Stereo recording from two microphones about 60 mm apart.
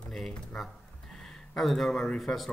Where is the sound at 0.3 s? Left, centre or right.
Centre.